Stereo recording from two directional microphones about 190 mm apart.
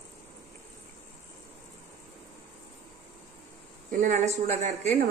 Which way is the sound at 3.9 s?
40° right (ahead or behind).